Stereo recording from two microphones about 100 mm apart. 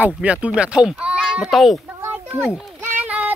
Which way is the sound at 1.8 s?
20° right (ahead or behind).